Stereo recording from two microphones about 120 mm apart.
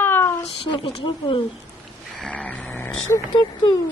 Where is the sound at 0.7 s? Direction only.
40° left (ahead or behind).